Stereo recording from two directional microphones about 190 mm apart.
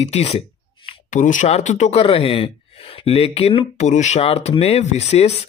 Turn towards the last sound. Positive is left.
turn(degrees=35)  # may be behind; listen again after turning